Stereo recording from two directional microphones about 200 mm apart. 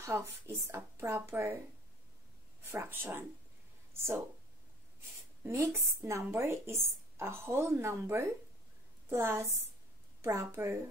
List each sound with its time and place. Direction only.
0.0 s speech: 15° right (ahead or behind)
2.6 s speech: 10° right (ahead or behind)
5.4 s speech: 10° right (ahead or behind)